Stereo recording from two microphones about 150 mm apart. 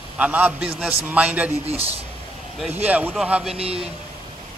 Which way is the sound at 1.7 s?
40° right (ahead or behind).